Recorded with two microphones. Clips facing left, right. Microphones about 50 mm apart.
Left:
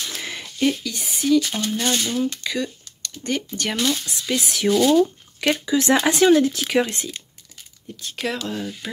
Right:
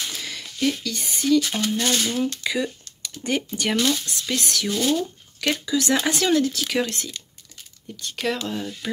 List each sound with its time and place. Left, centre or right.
0.2 s a sound: left
0.6 s speech: centre
3.9 s speech: centre
4.9 s shuffling cards: left
5.8 s speech: left
8.0 s speech: centre